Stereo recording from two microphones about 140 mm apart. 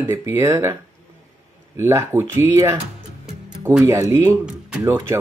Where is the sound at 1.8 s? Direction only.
20° right (ahead or behind).